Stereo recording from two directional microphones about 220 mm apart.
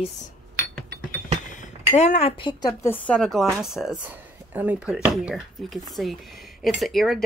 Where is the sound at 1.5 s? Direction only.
35° left (ahead or behind).